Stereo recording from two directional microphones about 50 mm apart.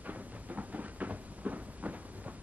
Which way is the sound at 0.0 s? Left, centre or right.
Right.